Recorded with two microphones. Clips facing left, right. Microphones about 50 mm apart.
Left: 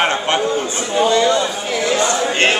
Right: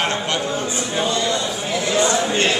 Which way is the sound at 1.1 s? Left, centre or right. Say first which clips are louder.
Left 6 dB; left.